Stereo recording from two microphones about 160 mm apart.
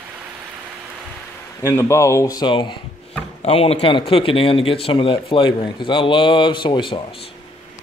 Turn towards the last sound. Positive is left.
turn(degrees=30)  # may be behind; listen again after turning